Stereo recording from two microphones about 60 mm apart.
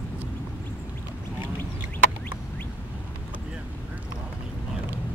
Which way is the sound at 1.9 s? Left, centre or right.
Left.